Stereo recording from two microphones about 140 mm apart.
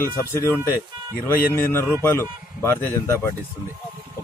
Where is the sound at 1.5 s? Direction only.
15° left (ahead or behind).